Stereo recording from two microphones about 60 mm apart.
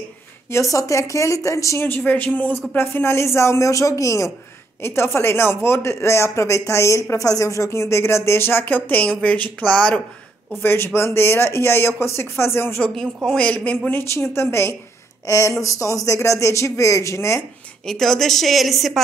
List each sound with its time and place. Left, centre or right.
0.5 s speech: left
2.0 s a man's voice: left
4.8 s speech: left
7.1 s speech: left
9.0 s a man's voice: centre
10.6 s speech: left
12.9 s a woman's voice: centre
13.4 s a man's voice: centre
13.8 s a woman's voice: left
14.2 s speech: left
15.2 s speech: left
17.8 s a woman's voice: centre